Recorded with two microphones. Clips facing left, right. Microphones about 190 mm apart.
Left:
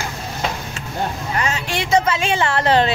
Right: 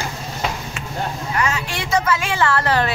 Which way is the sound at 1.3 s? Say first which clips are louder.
Right 1 dB; 25° left (ahead or behind).